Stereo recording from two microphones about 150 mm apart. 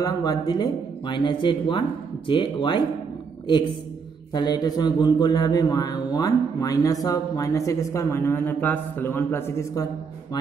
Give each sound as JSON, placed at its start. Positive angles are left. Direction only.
{"t": 0.0, "sound": "speech", "side_deg": 25}
{"t": 4.3, "sound": "a man's voice", "side_deg": 25}